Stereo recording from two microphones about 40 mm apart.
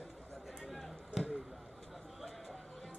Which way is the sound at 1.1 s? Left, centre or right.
Centre.